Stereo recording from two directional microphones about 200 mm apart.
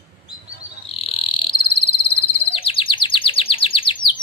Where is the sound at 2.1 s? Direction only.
30° left (ahead or behind).